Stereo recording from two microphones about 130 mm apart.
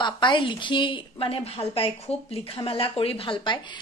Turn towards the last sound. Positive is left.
turn(degrees=45)  # may be behind; listen again after turning